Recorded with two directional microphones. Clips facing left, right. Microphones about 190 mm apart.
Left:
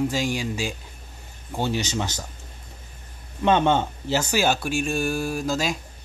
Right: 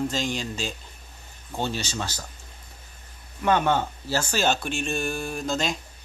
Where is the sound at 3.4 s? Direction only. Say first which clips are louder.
Left 3 dB; 25° left (ahead or behind); by 5.8 s 5° left (ahead or behind).